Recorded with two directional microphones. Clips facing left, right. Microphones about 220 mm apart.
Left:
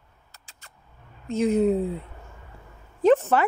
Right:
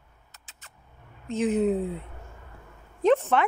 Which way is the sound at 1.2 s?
Centre (ahead or behind).